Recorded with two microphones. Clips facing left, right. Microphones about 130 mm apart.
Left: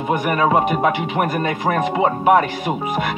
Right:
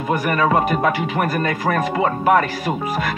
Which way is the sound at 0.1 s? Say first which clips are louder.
Left 1 dB; 20° left (ahead or behind).